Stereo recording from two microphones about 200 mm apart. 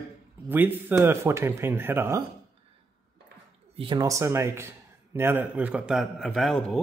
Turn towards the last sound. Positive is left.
turn(degrees=0)  # may be behind; listen again after turning